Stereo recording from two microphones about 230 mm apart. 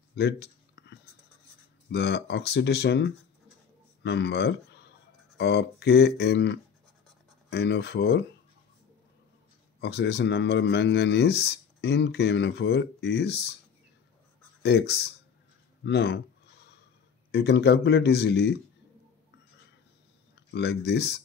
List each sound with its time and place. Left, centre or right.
0.1 s a sound: left
1.9 s speech: left
9.8 s speech: left
14.6 s speech: left
17.3 s speech: left
20.5 s speech: left